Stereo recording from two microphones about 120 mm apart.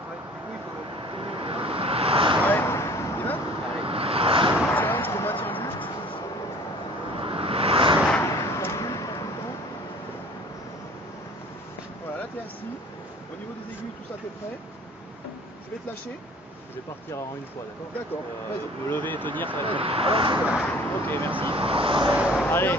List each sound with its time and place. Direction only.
1.2 s vehicle: 45° right (ahead or behind)
2.4 s a sound: 20° left (ahead or behind)
3.8 s waves: 50° right (ahead or behind)
4.6 s basketball bounce: 15° left (ahead or behind)
7.2 s a sound: 50° right (ahead or behind)
8.2 s a sound: 25° left (ahead or behind)
18.9 s speech: 15° left (ahead or behind)
19.5 s speech: 45° right (ahead or behind)
20.3 s speech: 10° right (ahead or behind)
20.7 s speech: 15° left (ahead or behind)
21.3 s speech: 45° right (ahead or behind)
22.1 s speech: 5° right (ahead or behind)
22.5 s speech: 20° left (ahead or behind)